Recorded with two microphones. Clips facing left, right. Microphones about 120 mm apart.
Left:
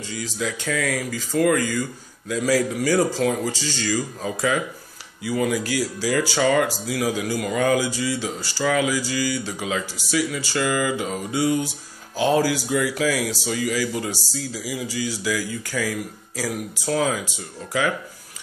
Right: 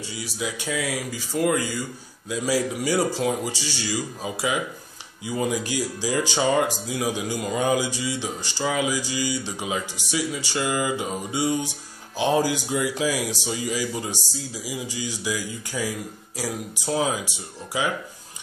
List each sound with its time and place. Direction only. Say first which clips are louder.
0.0 s speech: left 3 dB; 15° right (ahead or behind)